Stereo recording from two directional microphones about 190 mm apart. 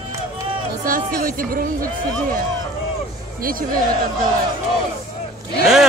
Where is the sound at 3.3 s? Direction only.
50° right (ahead or behind).